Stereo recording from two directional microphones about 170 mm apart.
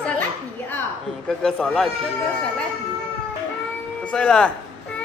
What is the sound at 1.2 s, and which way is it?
Speech, 5° left (ahead or behind).